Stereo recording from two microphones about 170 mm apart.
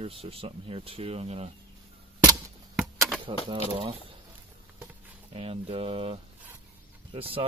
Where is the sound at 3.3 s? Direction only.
30° right (ahead or behind).